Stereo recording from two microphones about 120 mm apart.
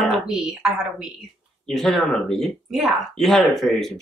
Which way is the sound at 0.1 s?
5° right (ahead or behind).